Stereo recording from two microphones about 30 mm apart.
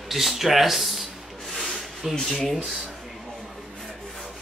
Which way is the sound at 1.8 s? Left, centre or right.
Centre.